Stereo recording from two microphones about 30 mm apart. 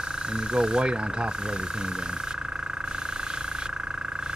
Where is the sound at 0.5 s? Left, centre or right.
Right.